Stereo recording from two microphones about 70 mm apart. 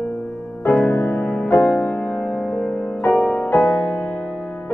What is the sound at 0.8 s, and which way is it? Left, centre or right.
Music, left.